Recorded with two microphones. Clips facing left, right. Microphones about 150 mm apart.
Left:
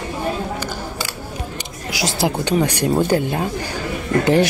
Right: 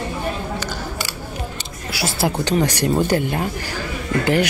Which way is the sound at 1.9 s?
15° left (ahead or behind).